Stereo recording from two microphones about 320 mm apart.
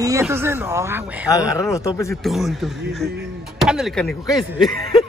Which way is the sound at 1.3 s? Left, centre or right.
Centre.